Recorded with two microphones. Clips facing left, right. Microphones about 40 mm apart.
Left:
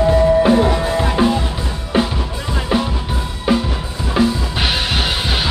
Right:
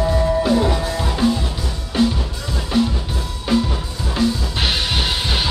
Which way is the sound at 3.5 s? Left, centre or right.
Centre.